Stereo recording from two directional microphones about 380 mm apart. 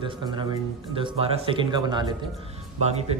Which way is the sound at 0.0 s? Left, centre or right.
Centre.